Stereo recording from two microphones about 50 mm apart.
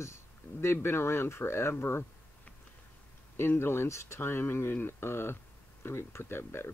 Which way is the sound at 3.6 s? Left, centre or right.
Left.